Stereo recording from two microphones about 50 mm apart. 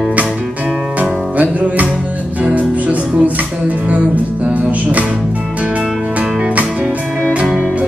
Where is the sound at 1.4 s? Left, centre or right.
Right.